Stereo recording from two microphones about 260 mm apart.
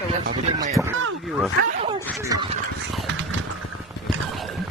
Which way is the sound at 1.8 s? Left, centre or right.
Centre.